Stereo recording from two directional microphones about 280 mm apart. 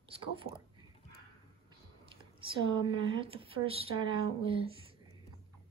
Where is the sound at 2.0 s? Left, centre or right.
Centre.